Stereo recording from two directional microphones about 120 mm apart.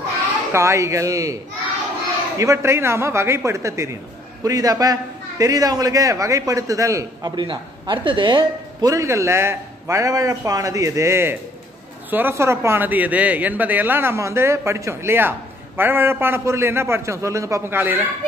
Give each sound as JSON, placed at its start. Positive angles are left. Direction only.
{"t": 0.5, "sound": "a man's voice", "side_deg": -25}
{"t": 7.4, "sound": "speech", "side_deg": -45}
{"t": 8.8, "sound": "speech", "side_deg": -25}